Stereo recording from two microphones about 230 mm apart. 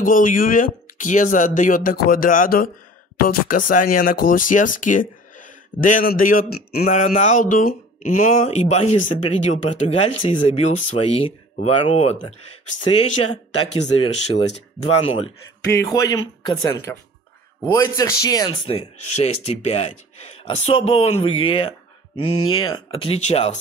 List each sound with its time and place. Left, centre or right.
0.0 s speech: left